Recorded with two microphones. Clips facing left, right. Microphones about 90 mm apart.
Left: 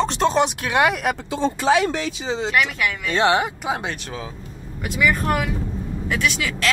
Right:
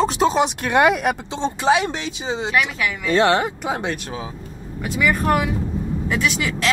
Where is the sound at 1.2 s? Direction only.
20° right (ahead or behind).